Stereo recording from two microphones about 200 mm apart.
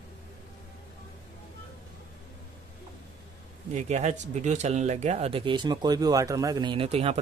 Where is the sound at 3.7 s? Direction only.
35° right (ahead or behind).